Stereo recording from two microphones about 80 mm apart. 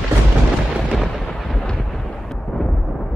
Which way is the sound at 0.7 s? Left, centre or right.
Centre.